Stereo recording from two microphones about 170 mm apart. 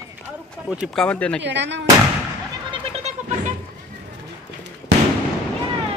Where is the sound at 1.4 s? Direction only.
90° right.